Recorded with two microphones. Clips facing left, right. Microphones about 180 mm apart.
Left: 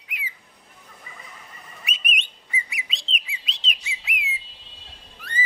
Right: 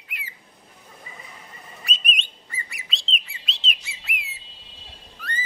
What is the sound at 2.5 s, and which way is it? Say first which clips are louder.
Bird: left 4 dB; centre (ahead or behind).